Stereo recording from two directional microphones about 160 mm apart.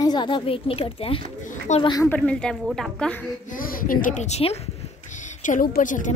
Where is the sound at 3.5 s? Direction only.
60° left (ahead or behind); by 4.6 s 40° left (ahead or behind).